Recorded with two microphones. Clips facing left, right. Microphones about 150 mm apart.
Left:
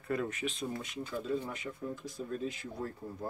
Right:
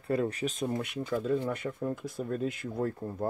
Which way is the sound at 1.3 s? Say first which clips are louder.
Right 6 dB; 55° right (ahead or behind).